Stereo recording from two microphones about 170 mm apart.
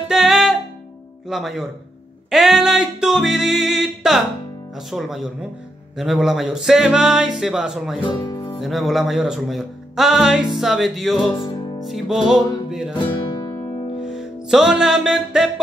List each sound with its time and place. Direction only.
0.1 s music: centre (ahead or behind)
1.3 s speech: centre (ahead or behind)
8.3 s music: 25° left (ahead or behind)
8.5 s speech: centre (ahead or behind)
12.6 s music: centre (ahead or behind)
12.9 s guitar: 25° left (ahead or behind)
14.0 s music: 5° right (ahead or behind)